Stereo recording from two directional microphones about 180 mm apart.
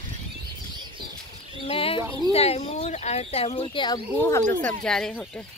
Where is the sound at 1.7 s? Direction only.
30° left (ahead or behind).